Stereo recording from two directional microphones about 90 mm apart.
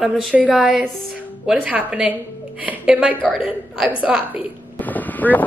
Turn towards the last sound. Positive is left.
turn(degrees=20)  # may be behind; listen again after turning